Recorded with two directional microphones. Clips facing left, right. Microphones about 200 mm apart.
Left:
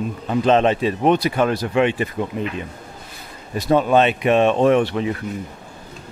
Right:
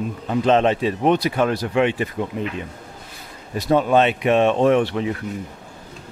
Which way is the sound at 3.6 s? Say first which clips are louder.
Left 1 dB; 25° left (ahead or behind).